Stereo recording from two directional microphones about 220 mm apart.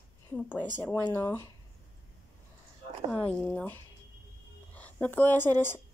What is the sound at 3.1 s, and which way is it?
Speech, 5° left (ahead or behind).